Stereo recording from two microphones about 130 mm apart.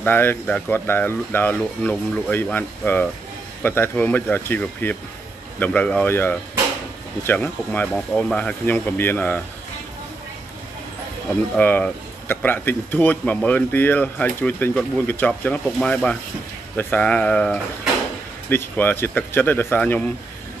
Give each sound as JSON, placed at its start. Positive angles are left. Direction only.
{"t": 0.0, "sound": "speech", "side_deg": 15}
{"t": 11.5, "sound": "speech", "side_deg": 10}